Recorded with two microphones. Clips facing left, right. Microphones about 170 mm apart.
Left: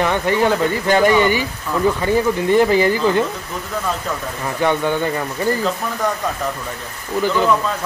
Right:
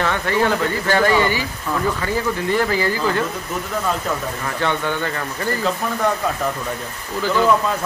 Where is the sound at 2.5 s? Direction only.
20° left (ahead or behind).